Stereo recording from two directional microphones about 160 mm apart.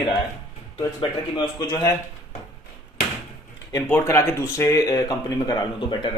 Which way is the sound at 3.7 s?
15° left (ahead or behind).